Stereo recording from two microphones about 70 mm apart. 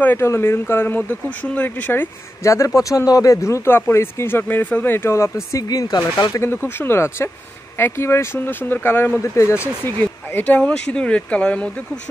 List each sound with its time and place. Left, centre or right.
0.0 s speech: left
2.4 s speech: left
6.5 s speech: left
9.2 s speech: left
9.8 s speech: left
10.6 s speech: centre